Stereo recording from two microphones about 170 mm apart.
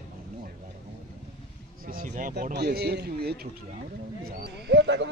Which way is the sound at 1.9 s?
55° right (ahead or behind).